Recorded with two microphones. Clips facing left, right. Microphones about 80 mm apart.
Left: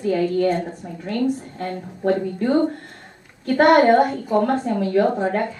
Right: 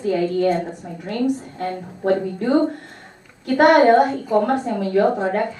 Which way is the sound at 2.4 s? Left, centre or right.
Right.